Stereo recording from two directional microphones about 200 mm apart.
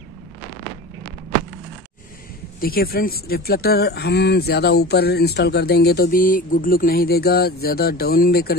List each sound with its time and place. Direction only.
2.6 s speech: 50° left (ahead or behind)